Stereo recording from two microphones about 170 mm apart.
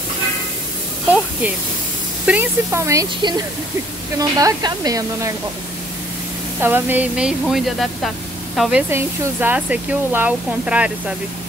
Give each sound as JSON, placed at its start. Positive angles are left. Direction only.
{"t": 2.2, "sound": "speech", "side_deg": -10}
{"t": 6.6, "sound": "speech", "side_deg": -10}